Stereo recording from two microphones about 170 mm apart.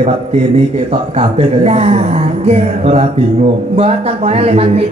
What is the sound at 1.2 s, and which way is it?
Speech, 40° right (ahead or behind).